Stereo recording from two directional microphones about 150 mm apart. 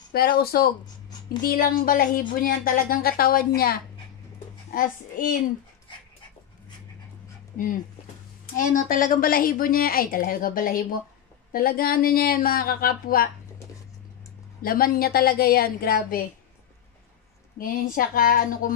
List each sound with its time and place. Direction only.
0.1 s speech: 90° left
1.4 s speech: 75° left (ahead or behind)
4.7 s speech: 65° left (ahead or behind)
8.5 s speech: 65° left (ahead or behind)
14.6 s a woman's voice: 80° left
17.6 s speech: 70° left (ahead or behind)